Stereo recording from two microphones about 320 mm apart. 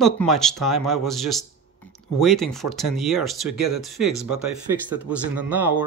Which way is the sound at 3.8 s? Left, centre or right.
Centre.